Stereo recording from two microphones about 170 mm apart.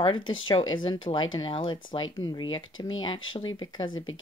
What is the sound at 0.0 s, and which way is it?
Speech, 30° left (ahead or behind).